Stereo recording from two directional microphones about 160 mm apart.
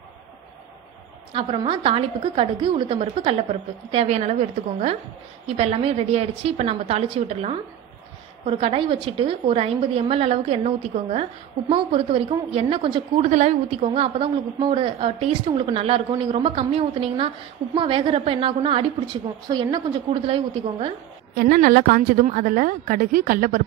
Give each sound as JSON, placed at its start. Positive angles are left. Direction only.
{"t": 1.3, "sound": "a woman's voice", "side_deg": -35}
{"t": 13.3, "sound": "a woman's voice", "side_deg": -45}
{"t": 21.4, "sound": "a woman's voice", "side_deg": -60}